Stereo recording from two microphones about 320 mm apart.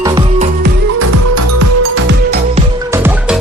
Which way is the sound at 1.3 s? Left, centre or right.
Right.